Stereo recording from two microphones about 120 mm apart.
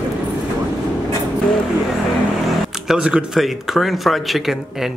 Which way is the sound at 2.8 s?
5° right (ahead or behind).